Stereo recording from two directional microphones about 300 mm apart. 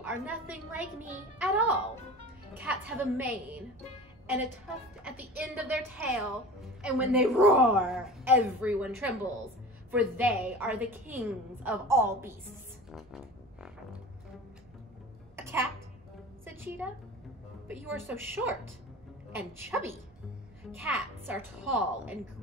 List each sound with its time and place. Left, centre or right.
0.0 s a woman's voice: centre
5.0 s a woman's voice: centre
15.3 s a sound: centre
16.4 s music: centre
17.6 s a woman's voice: centre